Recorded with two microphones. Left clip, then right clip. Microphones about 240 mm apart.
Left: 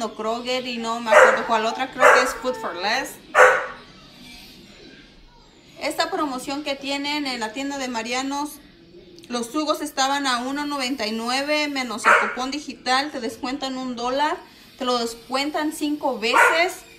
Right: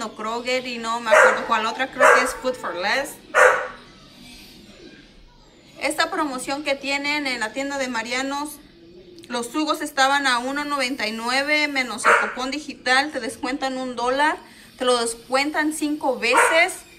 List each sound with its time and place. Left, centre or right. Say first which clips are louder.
0.0 s a woman's voice: left 1 dB; centre
5.8 s a woman's voice: right 1 dB; centre